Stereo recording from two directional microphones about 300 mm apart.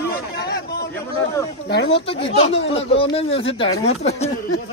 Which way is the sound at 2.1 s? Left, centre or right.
Centre.